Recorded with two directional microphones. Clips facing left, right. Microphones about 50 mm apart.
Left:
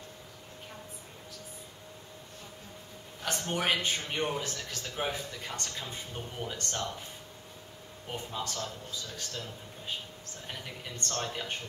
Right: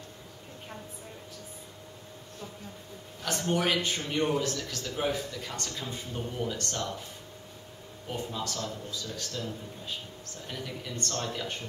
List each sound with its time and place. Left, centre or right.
3.4 s speech: centre
4.6 s speech: left
4.9 s speech: centre
8.1 s speech: centre